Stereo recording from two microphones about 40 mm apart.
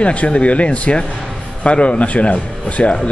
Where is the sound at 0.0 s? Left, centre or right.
Left.